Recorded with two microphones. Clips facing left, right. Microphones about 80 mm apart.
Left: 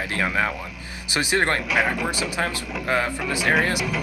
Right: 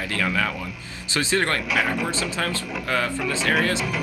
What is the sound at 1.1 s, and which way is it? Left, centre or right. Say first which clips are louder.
Speech: left 1 dB; centre.